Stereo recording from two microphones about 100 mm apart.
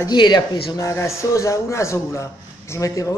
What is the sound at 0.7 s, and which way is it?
A man's voice, 30° left (ahead or behind).